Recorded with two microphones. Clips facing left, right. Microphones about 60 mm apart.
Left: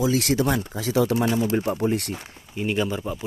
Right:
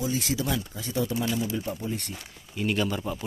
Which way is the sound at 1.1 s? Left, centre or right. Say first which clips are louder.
Left 6 dB; left.